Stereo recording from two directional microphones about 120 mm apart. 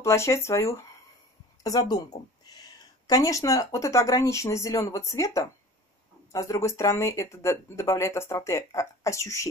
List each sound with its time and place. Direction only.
0.0 s speech: 25° left (ahead or behind)